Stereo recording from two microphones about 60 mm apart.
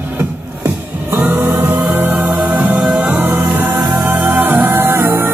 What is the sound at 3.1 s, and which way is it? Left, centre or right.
Music, right.